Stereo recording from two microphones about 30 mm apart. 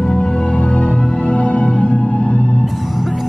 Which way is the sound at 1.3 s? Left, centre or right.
Left.